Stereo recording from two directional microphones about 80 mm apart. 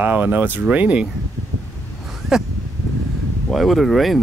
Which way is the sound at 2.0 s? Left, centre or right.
Centre.